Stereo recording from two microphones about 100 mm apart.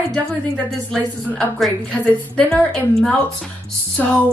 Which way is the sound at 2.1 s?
10° left (ahead or behind).